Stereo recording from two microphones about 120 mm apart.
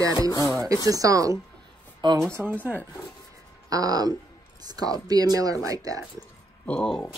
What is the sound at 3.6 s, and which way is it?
Speech, 30° right (ahead or behind).